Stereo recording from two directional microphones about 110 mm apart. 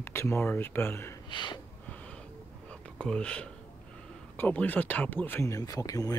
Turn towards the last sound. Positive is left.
turn(degrees=35)  # may be behind; listen again after turning